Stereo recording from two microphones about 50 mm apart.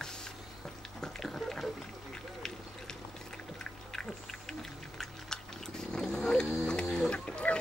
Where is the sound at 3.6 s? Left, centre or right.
Centre.